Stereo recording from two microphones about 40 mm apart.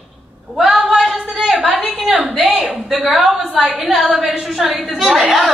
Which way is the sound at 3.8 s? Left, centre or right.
Centre.